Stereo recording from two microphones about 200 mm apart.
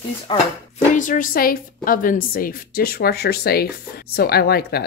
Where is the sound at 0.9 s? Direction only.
40° left (ahead or behind).